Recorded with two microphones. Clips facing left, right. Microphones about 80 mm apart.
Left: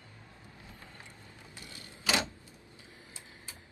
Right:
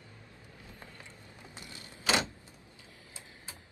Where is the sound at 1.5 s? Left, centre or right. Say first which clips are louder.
Right 1 dB; right.